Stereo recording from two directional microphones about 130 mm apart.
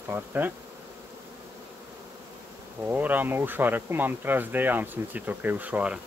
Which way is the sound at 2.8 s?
15° right (ahead or behind).